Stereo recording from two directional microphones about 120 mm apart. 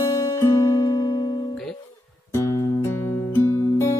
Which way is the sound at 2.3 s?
25° left (ahead or behind).